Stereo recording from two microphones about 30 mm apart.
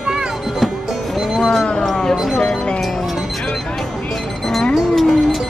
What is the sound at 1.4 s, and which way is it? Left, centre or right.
Speech, centre.